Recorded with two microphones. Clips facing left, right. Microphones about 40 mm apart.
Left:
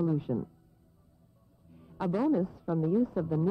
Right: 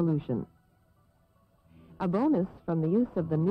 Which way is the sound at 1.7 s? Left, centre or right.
Centre.